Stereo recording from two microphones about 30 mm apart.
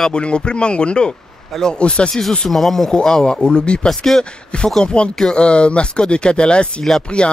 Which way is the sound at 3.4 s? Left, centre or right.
Left.